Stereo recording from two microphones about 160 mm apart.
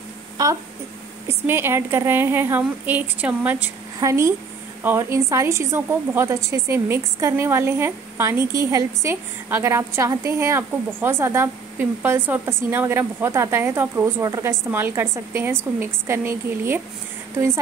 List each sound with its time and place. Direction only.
0.4 s a woman's voice: 20° right (ahead or behind)